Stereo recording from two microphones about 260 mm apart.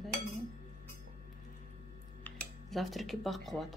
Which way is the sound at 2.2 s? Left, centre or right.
Centre.